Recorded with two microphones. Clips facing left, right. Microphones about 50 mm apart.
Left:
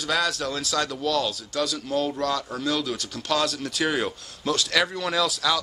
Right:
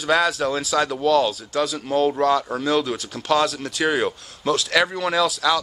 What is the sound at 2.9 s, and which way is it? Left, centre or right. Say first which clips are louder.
Speech: right 5 dB; centre.